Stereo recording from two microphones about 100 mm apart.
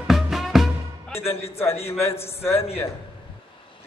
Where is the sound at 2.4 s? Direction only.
25° left (ahead or behind).